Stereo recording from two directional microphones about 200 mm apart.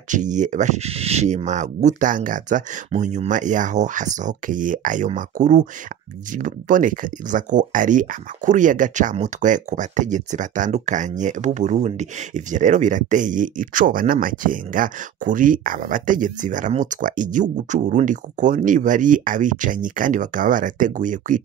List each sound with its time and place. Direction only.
0.1 s speech: 40° right (ahead or behind)